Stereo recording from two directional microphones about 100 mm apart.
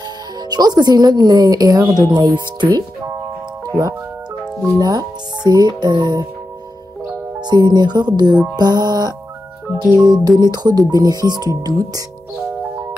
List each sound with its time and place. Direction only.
0.4 s speech: 40° right (ahead or behind)
7.4 s speech: 45° right (ahead or behind)